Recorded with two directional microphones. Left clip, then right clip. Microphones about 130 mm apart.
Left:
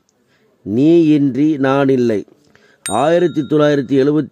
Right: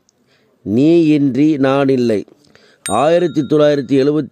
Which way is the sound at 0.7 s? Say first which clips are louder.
Even; 30° right (ahead or behind).